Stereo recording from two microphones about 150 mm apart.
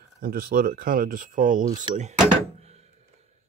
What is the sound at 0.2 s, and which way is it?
Speech, 75° right (ahead or behind).